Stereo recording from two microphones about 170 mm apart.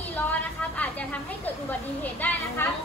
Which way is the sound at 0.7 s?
10° left (ahead or behind).